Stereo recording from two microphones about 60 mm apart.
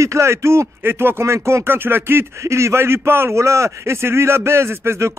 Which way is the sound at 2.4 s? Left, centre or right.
Right.